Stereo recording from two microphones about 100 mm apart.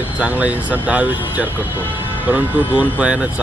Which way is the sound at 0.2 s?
15° right (ahead or behind).